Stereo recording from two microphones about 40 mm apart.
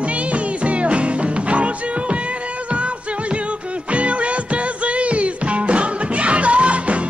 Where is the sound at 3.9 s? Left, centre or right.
Right.